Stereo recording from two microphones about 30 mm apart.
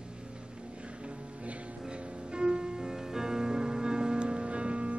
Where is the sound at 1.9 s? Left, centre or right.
Right.